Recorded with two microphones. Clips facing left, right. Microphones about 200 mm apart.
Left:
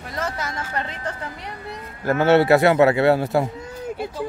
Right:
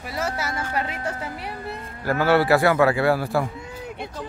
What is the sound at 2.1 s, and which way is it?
A man's voice, 25° left (ahead or behind).